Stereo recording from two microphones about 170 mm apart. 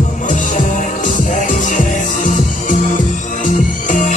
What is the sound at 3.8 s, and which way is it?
Music, 45° left (ahead or behind).